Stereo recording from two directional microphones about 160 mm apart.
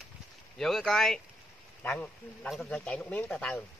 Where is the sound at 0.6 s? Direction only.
5° left (ahead or behind).